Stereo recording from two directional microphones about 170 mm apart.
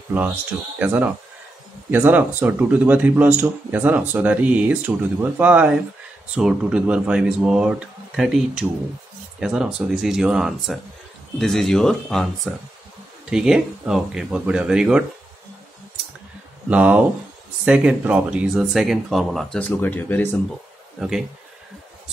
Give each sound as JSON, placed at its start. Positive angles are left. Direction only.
{"t": 0.1, "sound": "speech", "side_deg": -10}
{"t": 16.6, "sound": "speech", "side_deg": -10}